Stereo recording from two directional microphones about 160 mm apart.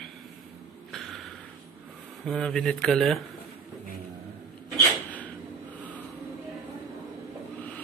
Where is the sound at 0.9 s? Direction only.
Centre (ahead or behind).